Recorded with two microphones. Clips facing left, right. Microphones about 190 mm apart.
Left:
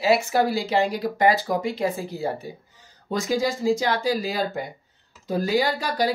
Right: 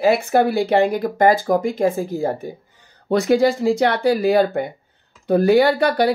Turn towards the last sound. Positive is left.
turn(degrees=-65)  # may be behind; listen again after turning